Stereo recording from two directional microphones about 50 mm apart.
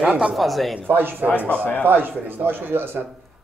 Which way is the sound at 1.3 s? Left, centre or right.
Left.